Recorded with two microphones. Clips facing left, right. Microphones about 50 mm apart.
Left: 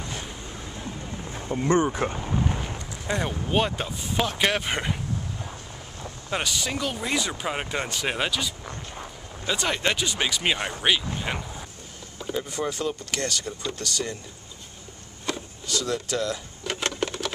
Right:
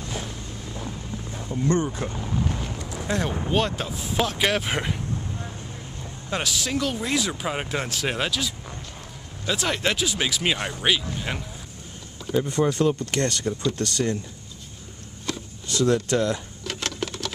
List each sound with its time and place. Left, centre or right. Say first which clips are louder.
0.0 s boat: right 2 dB; centre
1.5 s speech: left 2 dB; left
2.1 s boat: even; centre
3.1 s speech: right 1 dB; centre
6.3 s speech: right 1 dB; centre
12.2 s a sound: right 5 dB; centre
12.7 s speech: right 6 dB; right
15.3 s a sound: left 1 dB; centre
15.8 s speech: right 7 dB; right
16.6 s sewing machine: left 3 dB; centre